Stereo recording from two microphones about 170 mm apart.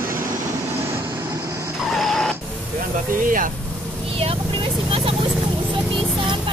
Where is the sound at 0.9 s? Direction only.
15° right (ahead or behind).